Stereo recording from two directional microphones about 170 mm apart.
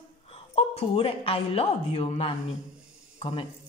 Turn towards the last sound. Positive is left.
turn(degrees=35)  # may be behind; listen again after turning